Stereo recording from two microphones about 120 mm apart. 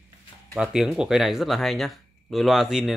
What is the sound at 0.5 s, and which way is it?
Speech, 5° right (ahead or behind).